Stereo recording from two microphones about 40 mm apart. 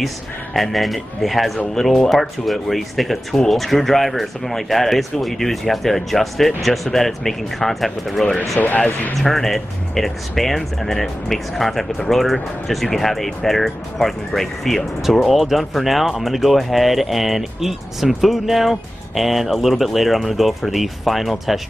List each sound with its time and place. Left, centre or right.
0.6 s speech: centre
8.6 s speech: left
9.2 s speech: centre
15.0 s speech: centre